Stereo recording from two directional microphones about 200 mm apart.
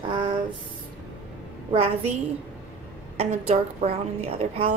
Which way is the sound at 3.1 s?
30° right (ahead or behind).